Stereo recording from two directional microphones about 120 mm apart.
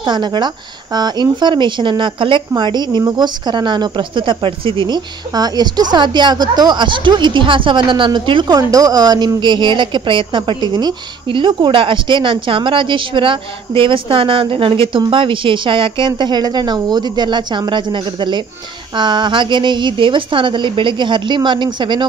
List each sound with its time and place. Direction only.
0.0 s speech: 40° right (ahead or behind)